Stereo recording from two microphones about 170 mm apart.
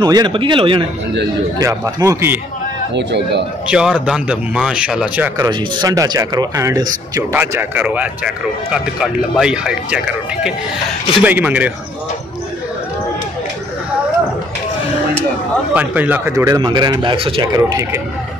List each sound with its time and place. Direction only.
0.0 s speech: 25° right (ahead or behind)
1.6 s speech: 20° right (ahead or behind)
2.9 s a man's voice: 90° right
3.6 s speech: 5° right (ahead or behind)
5.5 s speech: 20° right (ahead or behind)
15.7 s speech: 10° right (ahead or behind)